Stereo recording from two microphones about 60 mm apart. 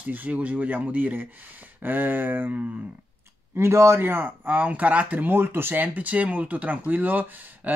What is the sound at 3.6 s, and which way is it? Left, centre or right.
Speech, right.